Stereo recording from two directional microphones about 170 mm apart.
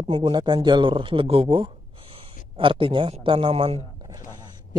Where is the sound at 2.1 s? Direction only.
30° right (ahead or behind).